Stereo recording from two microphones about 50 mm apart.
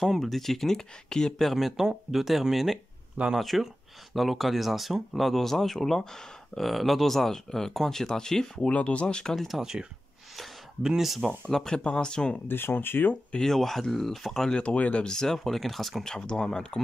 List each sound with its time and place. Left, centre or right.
0.0 s speech: centre
1.5 s speech: centre
8.5 s speech: left
9.3 s speech: centre
9.6 s speech: centre
11.2 s speech: centre
12.4 s speech: left
13.4 s speech: centre
14.5 s speech: left
15.0 s speech: centre
16.1 s speech: centre